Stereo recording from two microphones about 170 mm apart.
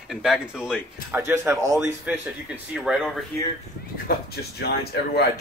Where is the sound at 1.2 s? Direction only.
15° right (ahead or behind).